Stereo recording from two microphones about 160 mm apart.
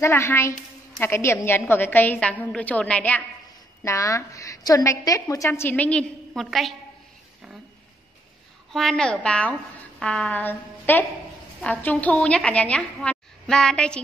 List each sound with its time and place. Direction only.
0.0 s a woman's voice: 15° left (ahead or behind)
3.8 s a woman's voice: 20° left (ahead or behind); by 6.7 s centre (ahead or behind)
8.7 s a woman's voice: 5° left (ahead or behind)